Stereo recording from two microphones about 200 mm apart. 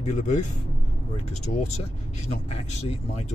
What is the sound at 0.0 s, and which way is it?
Speech, 35° left (ahead or behind).